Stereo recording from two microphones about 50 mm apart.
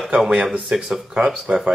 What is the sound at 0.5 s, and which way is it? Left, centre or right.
Speech, centre.